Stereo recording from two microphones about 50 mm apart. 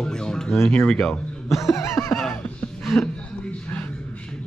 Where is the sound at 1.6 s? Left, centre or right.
Left.